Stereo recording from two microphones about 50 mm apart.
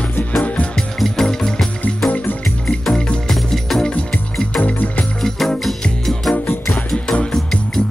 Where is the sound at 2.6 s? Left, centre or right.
Centre.